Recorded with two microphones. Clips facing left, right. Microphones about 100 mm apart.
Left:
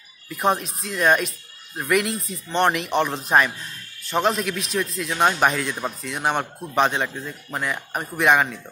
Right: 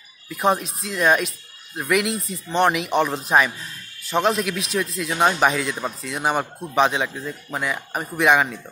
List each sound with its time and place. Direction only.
0.3 s speech: centre (ahead or behind)